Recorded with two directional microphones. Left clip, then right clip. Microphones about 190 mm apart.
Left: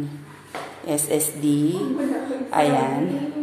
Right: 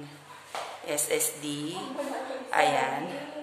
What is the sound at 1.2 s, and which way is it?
A woman's voice, centre (ahead or behind).